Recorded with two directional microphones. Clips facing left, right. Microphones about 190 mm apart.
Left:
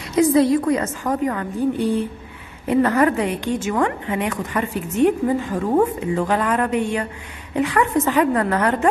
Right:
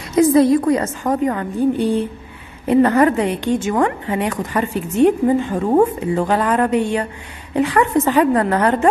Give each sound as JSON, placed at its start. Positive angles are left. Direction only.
{"t": 0.2, "sound": "a woman's voice", "side_deg": -45}
{"t": 0.7, "sound": "a woman's voice", "side_deg": -35}